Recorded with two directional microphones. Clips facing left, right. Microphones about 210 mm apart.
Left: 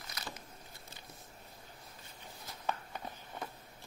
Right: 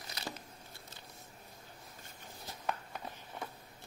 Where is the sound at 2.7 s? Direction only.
Centre (ahead or behind).